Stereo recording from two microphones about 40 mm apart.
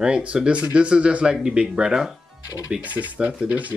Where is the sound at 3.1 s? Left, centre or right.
Right.